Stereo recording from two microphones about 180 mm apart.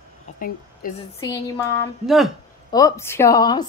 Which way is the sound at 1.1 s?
20° left (ahead or behind).